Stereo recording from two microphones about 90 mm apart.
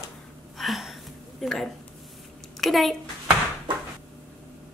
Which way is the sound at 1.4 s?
Centre (ahead or behind).